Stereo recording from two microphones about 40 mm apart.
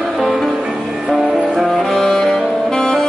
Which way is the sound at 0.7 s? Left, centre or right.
Centre.